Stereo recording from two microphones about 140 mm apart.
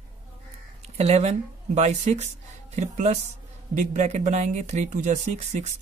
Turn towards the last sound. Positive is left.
turn(degrees=-55)  # may be behind; listen again after turning